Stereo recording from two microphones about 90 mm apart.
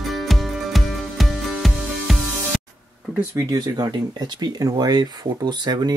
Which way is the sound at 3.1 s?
25° right (ahead or behind).